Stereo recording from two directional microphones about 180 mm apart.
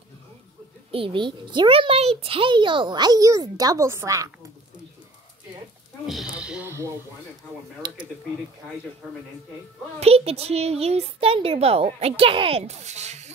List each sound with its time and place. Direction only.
0.9 s a child's voice: 30° right (ahead or behind)
6.0 s speech: 5° right (ahead or behind)
7.8 s a child's voice: 25° right (ahead or behind)
9.0 s speech: 5° right (ahead or behind)
9.9 s a woman's voice: 35° right (ahead or behind)